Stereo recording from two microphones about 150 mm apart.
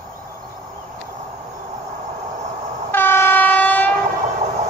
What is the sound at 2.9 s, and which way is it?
Train, 15° left (ahead or behind).